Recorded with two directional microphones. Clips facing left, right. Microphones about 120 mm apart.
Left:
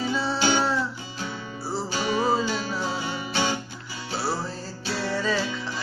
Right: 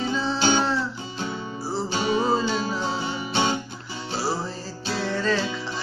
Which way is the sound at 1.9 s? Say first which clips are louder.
Right 1 dB; 25° right (ahead or behind).